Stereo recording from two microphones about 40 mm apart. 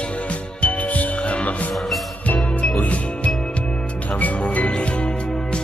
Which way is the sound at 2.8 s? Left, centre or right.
Left.